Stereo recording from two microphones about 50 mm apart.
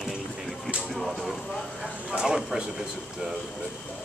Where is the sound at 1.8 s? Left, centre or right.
Centre.